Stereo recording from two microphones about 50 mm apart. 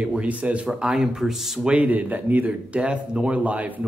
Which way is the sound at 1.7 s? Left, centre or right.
Right.